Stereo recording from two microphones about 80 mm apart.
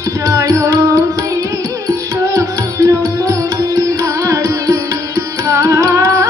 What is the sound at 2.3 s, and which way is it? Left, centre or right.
Music, right.